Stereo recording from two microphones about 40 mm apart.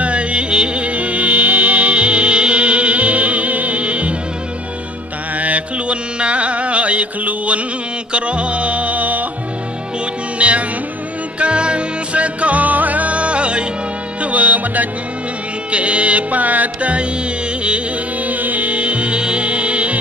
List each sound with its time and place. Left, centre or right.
0.0 s music: right
5.4 s music: right
10.4 s music: right
18.2 s music: right